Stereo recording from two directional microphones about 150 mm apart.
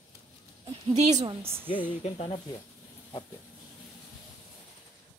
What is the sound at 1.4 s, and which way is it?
Speech, 15° right (ahead or behind).